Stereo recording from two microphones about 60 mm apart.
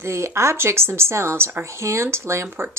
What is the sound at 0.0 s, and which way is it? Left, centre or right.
A woman's voice, right.